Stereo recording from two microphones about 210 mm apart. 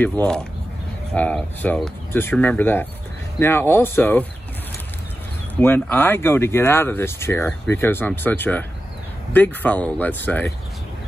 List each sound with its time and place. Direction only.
0.0 s speech: 5° left (ahead or behind)
5.6 s speech: 10° left (ahead or behind)